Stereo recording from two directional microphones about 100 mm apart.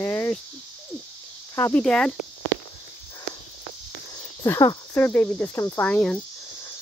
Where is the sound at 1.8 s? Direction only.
10° left (ahead or behind).